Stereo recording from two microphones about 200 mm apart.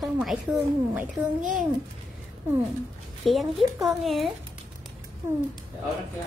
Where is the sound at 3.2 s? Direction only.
Centre (ahead or behind).